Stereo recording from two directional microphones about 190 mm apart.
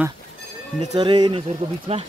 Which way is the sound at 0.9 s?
25° right (ahead or behind).